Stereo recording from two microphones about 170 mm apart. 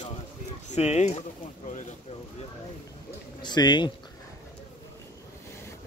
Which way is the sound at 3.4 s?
25° left (ahead or behind).